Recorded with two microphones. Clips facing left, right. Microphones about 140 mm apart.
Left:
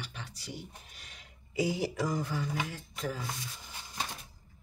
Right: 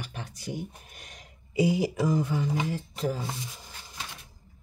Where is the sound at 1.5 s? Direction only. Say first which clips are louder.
Right 6 dB; 15° right (ahead or behind).